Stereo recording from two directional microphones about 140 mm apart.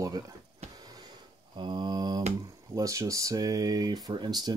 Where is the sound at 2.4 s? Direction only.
25° right (ahead or behind).